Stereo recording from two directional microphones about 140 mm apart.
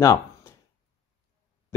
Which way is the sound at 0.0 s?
20° left (ahead or behind).